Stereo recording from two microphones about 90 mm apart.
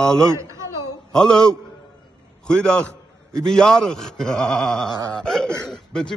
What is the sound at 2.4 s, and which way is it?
A man's voice, 10° left (ahead or behind).